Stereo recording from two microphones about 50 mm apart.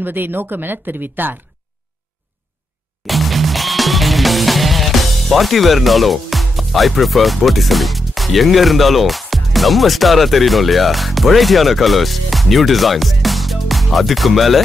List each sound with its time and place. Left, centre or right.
0.0 s speech: right
3.1 s music: centre